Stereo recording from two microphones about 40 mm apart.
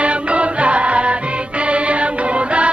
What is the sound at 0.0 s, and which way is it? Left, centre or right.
Music, right.